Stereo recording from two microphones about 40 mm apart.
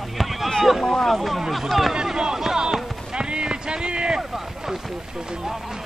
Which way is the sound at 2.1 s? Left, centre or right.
Centre.